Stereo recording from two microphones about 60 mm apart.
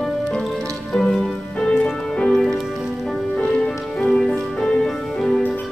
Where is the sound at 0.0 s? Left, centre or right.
Centre.